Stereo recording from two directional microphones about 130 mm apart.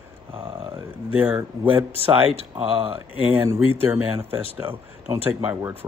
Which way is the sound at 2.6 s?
45° right (ahead or behind).